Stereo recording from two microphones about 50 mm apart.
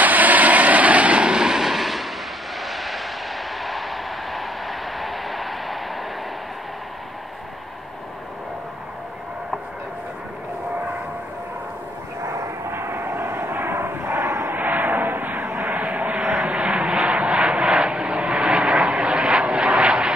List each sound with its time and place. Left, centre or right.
0.0 s vehicle: right; by 5.8 s centre
12.2 s vehicle: right
12.7 s vehicle: right
14.5 s vehicle: right